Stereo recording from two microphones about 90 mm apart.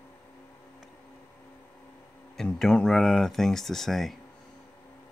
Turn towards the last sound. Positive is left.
turn(degrees=5)  # may be behind; listen again after turning